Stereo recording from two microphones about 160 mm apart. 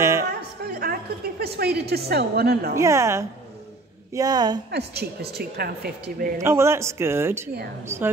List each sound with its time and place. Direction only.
0.3 s a woman's voice: 70° right (ahead or behind)
2.7 s a man's voice: 20° right (ahead or behind)
4.6 s speech: 90° right; by 6.3 s 70° right (ahead or behind)
6.4 s a man's voice: 15° right (ahead or behind)